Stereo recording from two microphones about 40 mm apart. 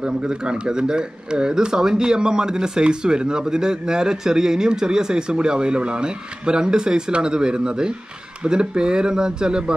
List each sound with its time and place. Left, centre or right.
0.0 s speech: right